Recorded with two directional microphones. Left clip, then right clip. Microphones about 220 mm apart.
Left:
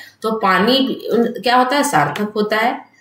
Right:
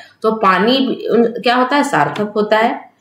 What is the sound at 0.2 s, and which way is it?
Speech, 5° right (ahead or behind).